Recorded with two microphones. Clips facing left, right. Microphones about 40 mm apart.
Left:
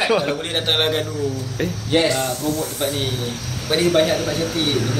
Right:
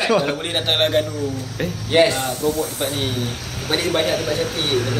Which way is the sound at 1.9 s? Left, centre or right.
Centre.